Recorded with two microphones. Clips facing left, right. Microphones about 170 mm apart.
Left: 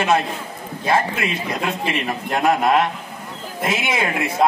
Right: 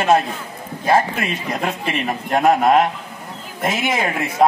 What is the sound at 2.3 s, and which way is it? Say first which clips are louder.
A man's voice: right 3 dB; 40° right (ahead or behind).